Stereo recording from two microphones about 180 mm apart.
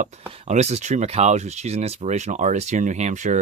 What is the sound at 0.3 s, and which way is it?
Speech, 35° right (ahead or behind).